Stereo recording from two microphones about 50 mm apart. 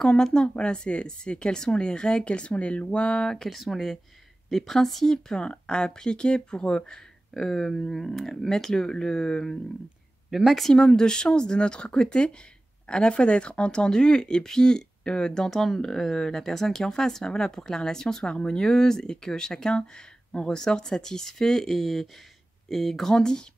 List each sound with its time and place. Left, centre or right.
0.0 s speech: centre
3.4 s speech: centre
10.3 s speech: centre
10.7 s speech: centre
23.1 s speech: centre